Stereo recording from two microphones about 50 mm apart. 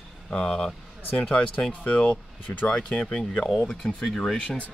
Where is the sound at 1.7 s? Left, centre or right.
Left.